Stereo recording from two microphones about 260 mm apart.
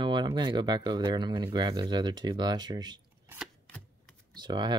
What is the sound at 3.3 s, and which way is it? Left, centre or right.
Shuffling cards, centre.